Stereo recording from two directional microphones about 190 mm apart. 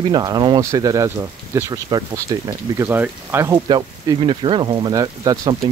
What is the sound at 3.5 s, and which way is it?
Speech, 25° right (ahead or behind).